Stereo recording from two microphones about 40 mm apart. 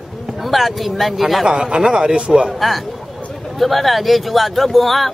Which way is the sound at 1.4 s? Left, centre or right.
Centre.